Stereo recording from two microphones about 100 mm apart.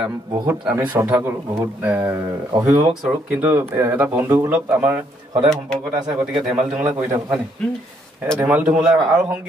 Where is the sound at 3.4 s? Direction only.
30° right (ahead or behind).